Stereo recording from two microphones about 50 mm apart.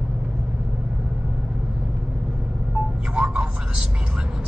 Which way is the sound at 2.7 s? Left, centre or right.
Centre.